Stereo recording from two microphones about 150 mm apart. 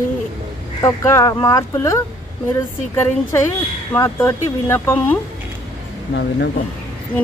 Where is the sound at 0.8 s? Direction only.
20° left (ahead or behind).